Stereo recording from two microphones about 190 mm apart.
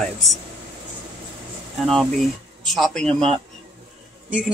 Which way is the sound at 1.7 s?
Centre (ahead or behind).